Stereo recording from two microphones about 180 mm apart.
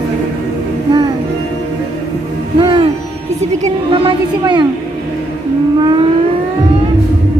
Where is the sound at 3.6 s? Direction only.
30° right (ahead or behind).